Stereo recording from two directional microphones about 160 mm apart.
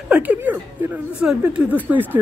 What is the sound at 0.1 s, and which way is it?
Speech, 10° right (ahead or behind).